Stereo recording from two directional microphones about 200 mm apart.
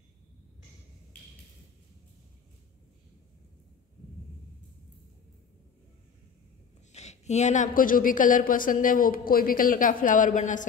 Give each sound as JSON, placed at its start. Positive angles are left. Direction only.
{"t": 6.9, "sound": "a woman's voice", "side_deg": 35}